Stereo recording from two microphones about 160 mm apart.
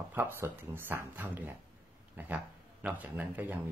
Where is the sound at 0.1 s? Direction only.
15° right (ahead or behind).